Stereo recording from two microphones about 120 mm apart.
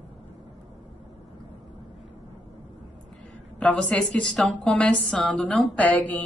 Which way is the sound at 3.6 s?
10° left (ahead or behind).